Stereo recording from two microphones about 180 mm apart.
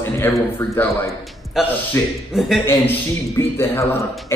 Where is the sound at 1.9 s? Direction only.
15° left (ahead or behind).